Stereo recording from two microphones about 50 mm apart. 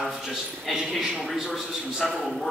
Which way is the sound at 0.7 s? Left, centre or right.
Centre.